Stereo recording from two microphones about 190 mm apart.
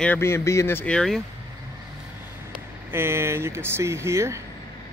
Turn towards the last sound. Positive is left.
turn(degrees=-15)  # may be behind; listen again after turning